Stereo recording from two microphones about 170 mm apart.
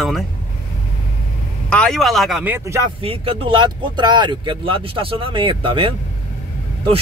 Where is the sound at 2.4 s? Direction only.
15° right (ahead or behind).